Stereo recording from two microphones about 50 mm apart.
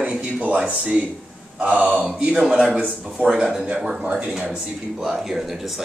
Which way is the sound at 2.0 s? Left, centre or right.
Centre.